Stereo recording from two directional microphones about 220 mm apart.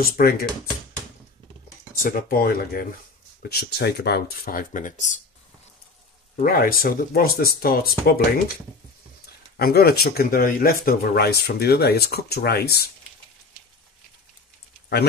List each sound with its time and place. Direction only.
0.0 s speech: 45° left (ahead or behind)
2.0 s speech: 40° left (ahead or behind)
6.3 s speech: 40° left (ahead or behind)
9.2 s speech: 45° left (ahead or behind)